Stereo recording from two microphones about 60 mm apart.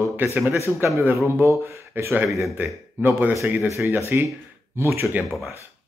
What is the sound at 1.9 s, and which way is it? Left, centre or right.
Speech, right.